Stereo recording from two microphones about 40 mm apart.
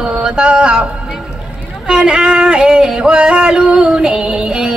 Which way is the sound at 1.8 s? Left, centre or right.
Right.